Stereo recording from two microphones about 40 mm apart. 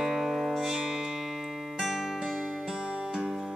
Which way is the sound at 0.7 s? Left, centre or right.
Centre.